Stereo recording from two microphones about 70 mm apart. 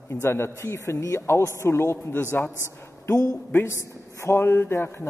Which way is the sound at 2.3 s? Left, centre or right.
Left.